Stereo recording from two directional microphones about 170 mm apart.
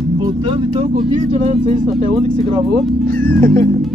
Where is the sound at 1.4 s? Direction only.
50° right (ahead or behind).